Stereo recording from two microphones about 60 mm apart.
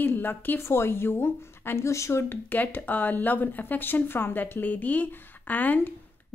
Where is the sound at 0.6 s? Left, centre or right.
Left.